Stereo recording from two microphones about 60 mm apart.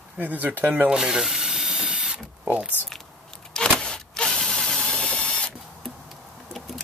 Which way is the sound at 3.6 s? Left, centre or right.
Centre.